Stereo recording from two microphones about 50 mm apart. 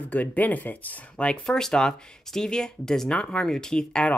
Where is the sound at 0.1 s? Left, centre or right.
Left.